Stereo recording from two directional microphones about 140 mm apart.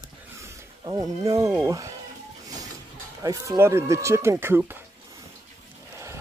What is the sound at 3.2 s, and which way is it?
Speech, 25° right (ahead or behind).